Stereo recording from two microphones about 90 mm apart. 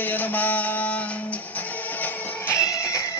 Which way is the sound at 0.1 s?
20° left (ahead or behind).